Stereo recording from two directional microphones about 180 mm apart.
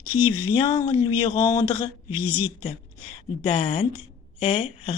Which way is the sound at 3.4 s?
30° left (ahead or behind).